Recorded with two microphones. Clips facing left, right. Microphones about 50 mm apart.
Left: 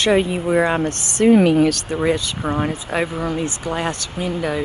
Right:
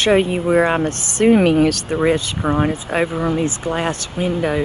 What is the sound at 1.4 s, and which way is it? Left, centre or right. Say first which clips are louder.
Speech: right 1 dB; right.